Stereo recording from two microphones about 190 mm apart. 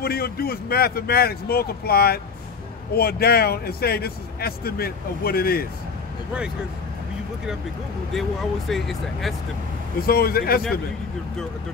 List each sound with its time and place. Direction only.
0.0 s a man's voice: 55° left (ahead or behind)
8.1 s speech: centre (ahead or behind)
9.9 s a man's voice: 50° left (ahead or behind)